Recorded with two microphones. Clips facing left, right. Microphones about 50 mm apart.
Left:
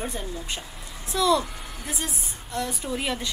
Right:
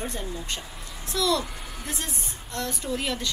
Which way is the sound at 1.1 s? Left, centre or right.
Centre.